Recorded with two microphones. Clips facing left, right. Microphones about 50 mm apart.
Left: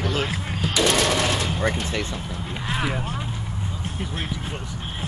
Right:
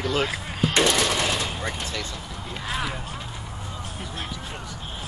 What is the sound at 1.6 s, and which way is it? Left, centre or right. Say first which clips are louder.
Speech: left 6 dB; left.